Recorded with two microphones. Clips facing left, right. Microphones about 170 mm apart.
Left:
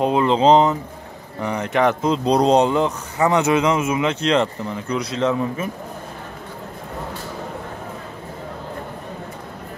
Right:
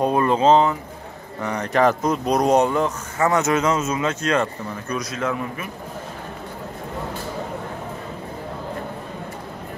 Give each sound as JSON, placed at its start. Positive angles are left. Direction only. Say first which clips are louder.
{"t": 0.0, "sound": "speech", "louder": "left 1 dB", "side_deg": 20}
{"t": 1.4, "sound": "speech", "louder": "even", "side_deg": 10}
{"t": 2.2, "sound": "speech", "louder": "left 2 dB", "side_deg": 30}
{"t": 2.6, "sound": "speech", "louder": "left 2 dB", "side_deg": 20}